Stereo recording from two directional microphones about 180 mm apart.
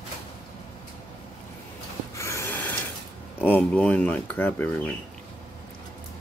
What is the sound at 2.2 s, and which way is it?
Gasp, 15° left (ahead or behind).